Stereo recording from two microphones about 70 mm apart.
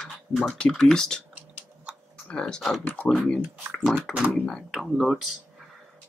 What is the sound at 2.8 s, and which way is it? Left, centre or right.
Speech, left.